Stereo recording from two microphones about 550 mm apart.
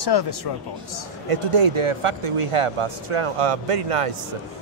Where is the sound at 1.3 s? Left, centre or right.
Right.